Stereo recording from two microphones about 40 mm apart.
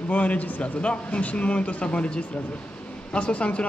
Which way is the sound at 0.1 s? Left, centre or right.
Left.